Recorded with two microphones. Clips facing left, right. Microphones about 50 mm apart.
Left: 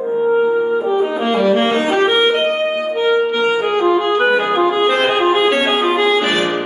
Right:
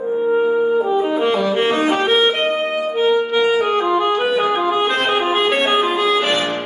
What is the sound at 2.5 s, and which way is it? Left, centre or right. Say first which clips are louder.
Music: left 2 dB; centre.